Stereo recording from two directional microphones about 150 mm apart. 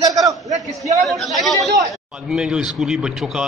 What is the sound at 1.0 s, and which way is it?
A man's voice, centre (ahead or behind).